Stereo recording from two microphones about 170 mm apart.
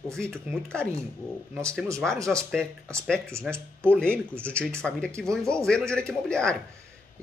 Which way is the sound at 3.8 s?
5° left (ahead or behind).